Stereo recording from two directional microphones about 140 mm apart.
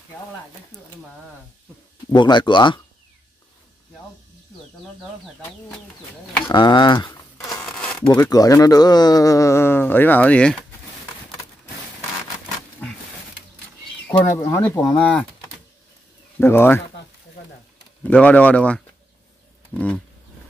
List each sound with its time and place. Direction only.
2.1 s speech: 35° left (ahead or behind)
6.5 s speech: 30° left (ahead or behind)
7.6 s a sound: 5° left (ahead or behind)
8.1 s speech: 25° left (ahead or behind); by 10.6 s 10° left (ahead or behind)
14.2 s speech: 20° left (ahead or behind)
16.3 s speech: 15° left (ahead or behind)
18.0 s speech: 10° left (ahead or behind)